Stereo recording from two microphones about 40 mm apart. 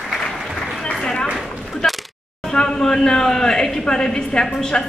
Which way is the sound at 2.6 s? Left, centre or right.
Centre.